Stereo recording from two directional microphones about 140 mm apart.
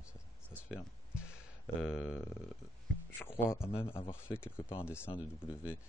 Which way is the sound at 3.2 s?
15° left (ahead or behind).